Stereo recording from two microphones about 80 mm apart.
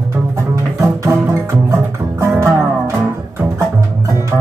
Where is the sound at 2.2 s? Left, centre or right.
Right.